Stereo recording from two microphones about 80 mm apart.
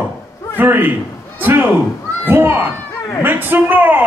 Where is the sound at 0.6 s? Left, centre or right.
Right.